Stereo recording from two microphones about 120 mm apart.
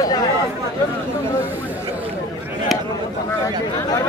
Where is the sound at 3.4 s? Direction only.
25° left (ahead or behind).